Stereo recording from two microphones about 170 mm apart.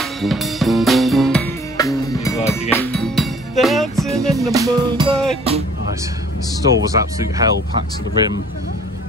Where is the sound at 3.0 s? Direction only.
Centre (ahead or behind).